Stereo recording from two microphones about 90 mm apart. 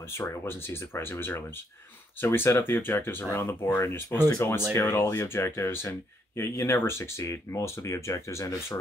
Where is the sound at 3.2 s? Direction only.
35° left (ahead or behind).